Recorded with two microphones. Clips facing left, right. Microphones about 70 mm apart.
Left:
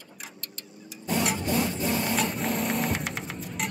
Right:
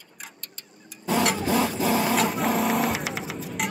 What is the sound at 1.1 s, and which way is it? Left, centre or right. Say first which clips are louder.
Printer: right 4 dB; right.